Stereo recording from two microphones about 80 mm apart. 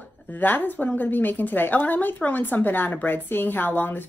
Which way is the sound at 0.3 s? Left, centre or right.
Left.